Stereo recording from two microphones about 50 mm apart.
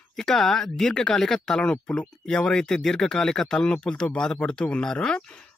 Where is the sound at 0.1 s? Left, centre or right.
Centre.